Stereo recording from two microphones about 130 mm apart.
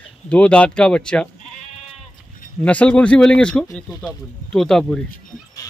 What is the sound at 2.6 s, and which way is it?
A man's voice, 10° left (ahead or behind).